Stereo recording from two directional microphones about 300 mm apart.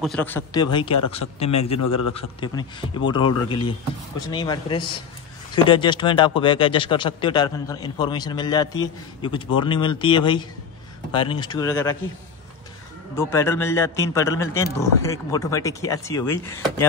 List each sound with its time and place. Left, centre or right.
0.0 s a man's voice: centre
13.1 s speech: centre